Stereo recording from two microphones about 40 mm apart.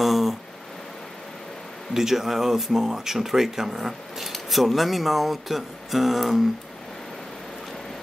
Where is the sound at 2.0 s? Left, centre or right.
Centre.